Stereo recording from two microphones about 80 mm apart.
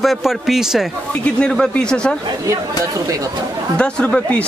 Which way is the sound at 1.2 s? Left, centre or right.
Centre.